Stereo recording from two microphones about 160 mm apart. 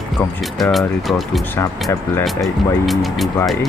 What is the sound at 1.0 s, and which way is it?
Speech, centre (ahead or behind).